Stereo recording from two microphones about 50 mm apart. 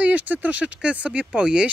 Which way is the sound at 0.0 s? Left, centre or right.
Right.